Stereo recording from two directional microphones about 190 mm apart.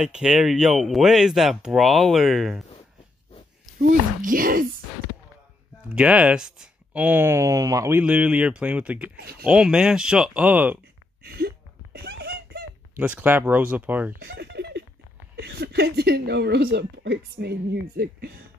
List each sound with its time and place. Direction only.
0.0 s speech: 5° right (ahead or behind)
4.2 s speech: 45° right (ahead or behind)
5.9 s speech: 5° right (ahead or behind)
8.0 s speech: 5° right (ahead or behind)
9.1 s a woman's voice: 55° right (ahead or behind)
9.4 s speech: 5° right (ahead or behind)
11.2 s a sound: 55° right (ahead or behind)
13.0 s speech: 10° right (ahead or behind)
14.2 s giggle: 60° right (ahead or behind)
15.3 s a woman's voice: 60° right (ahead or behind)